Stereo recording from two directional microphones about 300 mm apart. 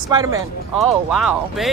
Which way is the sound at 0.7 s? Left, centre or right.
Centre.